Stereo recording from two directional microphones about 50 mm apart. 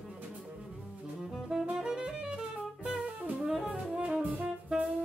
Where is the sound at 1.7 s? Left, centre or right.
Centre.